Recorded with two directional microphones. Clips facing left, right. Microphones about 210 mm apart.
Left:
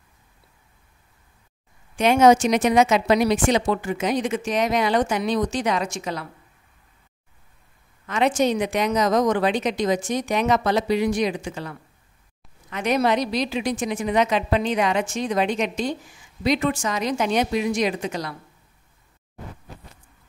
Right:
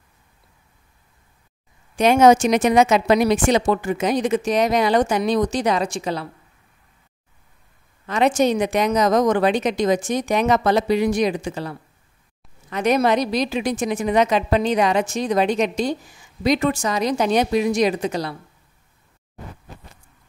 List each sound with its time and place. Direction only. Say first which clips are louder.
2.0 s a woman's voice: right 2 dB; 40° right (ahead or behind)
8.1 s a woman's voice: right 3 dB; 45° right (ahead or behind)